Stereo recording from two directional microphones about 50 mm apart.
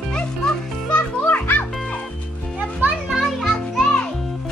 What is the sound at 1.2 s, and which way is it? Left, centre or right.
Music, left.